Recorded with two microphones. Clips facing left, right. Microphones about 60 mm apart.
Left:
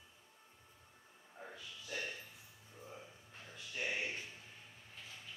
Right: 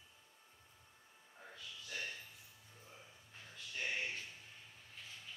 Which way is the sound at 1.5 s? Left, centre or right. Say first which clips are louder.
Left 2 dB; centre.